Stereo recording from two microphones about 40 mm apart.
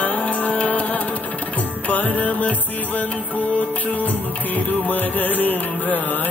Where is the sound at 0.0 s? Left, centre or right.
Left.